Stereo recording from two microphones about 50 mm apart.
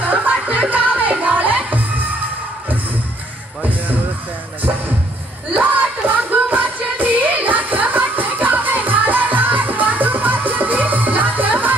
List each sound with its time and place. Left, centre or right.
0.0 s music: right
5.5 s music: right